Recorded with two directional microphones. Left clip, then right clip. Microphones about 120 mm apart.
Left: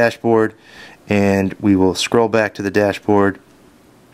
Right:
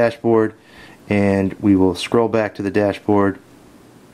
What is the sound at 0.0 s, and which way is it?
Speech, 35° left (ahead or behind).